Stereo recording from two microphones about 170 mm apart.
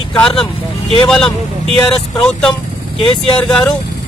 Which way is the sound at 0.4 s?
30° left (ahead or behind).